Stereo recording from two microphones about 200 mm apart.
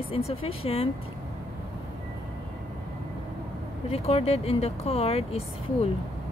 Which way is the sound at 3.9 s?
30° left (ahead or behind).